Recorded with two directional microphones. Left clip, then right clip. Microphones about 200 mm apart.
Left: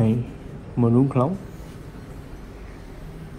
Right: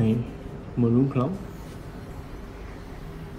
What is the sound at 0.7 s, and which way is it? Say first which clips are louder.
Speech: left 4 dB; 30° left (ahead or behind).